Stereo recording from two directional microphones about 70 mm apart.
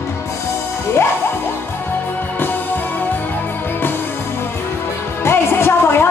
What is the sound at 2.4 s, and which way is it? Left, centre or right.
Music, left.